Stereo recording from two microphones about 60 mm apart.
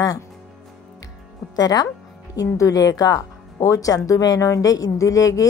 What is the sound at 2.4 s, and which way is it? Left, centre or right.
Speech, left.